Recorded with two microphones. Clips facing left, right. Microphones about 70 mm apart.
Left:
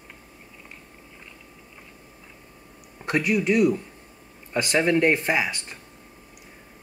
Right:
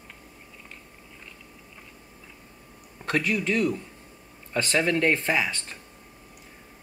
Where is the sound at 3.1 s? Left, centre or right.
Centre.